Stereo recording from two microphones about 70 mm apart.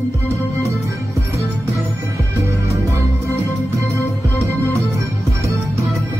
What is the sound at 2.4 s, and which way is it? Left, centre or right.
Music, right.